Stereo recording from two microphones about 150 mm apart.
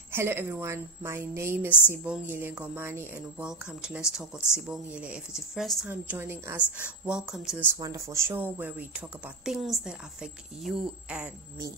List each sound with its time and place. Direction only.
0.1 s a woman's voice: 15° right (ahead or behind)
5.9 s a woman's voice: 15° right (ahead or behind)
7.8 s a woman's voice: 20° right (ahead or behind); by 11.2 s 5° right (ahead or behind)